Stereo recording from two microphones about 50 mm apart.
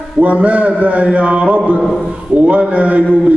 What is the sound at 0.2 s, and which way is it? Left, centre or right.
A man's voice, right.